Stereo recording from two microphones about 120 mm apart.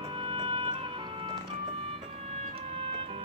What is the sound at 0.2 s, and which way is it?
Music, 50° right (ahead or behind).